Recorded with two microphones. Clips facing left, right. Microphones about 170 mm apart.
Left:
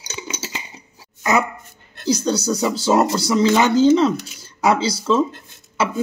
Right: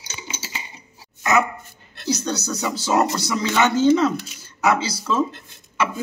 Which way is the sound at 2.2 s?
30° left (ahead or behind).